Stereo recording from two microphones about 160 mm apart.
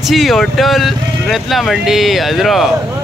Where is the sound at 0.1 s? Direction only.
Centre (ahead or behind).